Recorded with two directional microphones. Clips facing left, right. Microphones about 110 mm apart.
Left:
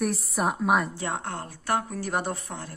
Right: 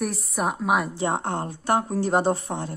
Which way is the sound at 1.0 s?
25° right (ahead or behind).